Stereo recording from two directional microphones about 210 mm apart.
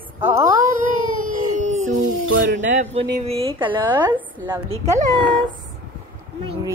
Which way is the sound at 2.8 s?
30° right (ahead or behind).